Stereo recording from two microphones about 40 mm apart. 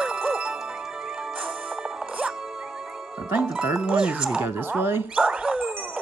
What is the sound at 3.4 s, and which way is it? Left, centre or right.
Speech, right.